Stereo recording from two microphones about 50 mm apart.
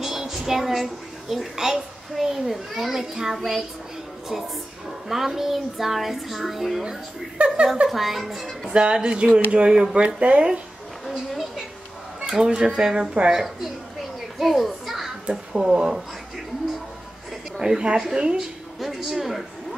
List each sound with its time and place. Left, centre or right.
0.0 s a child's voice: centre
5.0 s speech: centre
7.3 s speech: right
7.9 s speech: centre
8.7 s speech: centre
12.2 s a sound: centre
12.4 s a woman's voice: centre
14.4 s children playing: centre
15.2 s a woman's voice: centre
17.6 s a woman's voice: centre
18.8 s speech: centre